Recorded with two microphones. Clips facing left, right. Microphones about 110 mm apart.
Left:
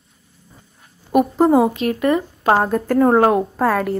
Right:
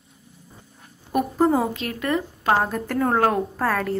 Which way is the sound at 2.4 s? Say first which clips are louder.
Left 5 dB; 40° left (ahead or behind).